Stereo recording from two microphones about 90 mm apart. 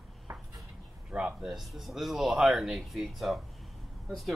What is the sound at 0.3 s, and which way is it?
Dishes, 20° right (ahead or behind).